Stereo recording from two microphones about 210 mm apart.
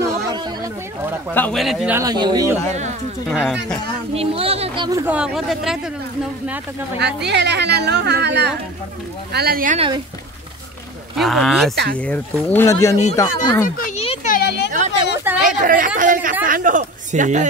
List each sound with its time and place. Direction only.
1.3 s a man's voice: 5° left (ahead or behind)
2.0 s speech: 20° right (ahead or behind)
3.3 s a man's voice: centre (ahead or behind)
4.1 s speech: 25° right (ahead or behind); by 5.8 s centre (ahead or behind)
7.0 s a woman's voice: 55° right (ahead or behind)
9.8 s speech: 20° right (ahead or behind)
11.1 s a man's voice: centre (ahead or behind)
11.7 s a woman's voice: 50° right (ahead or behind)
12.0 s speech: 5° left (ahead or behind)
13.7 s a sound: 40° left (ahead or behind)
14.0 s a sound: 25° left (ahead or behind)
14.3 s a sound: 50° left (ahead or behind)
15.3 s chatter: 10° right (ahead or behind)
15.6 s speech: 40° right (ahead or behind)